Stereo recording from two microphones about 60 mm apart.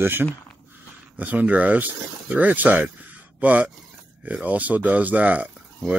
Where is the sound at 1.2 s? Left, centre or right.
Right.